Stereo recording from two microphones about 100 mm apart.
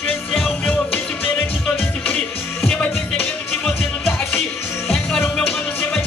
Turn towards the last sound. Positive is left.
turn(degrees=5)  # may be behind; listen again after turning